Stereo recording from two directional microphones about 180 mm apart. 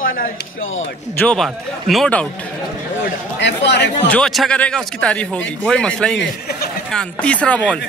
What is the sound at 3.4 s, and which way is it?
Speech, 70° left (ahead or behind).